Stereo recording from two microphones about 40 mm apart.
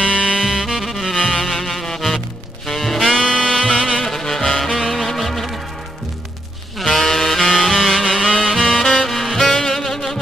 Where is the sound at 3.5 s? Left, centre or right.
Centre.